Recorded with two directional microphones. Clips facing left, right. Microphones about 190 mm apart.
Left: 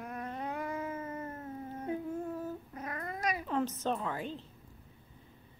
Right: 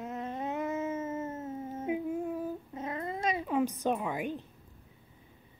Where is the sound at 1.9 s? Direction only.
10° right (ahead or behind).